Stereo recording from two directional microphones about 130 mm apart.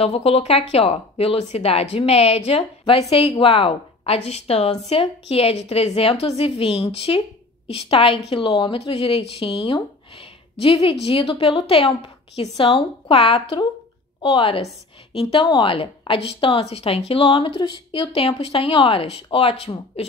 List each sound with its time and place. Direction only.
0.0 s a woman's voice: 50° left (ahead or behind)
18.1 s a woman's voice: 45° left (ahead or behind)